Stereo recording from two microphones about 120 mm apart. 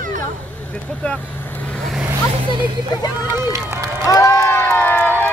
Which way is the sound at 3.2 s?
20° right (ahead or behind).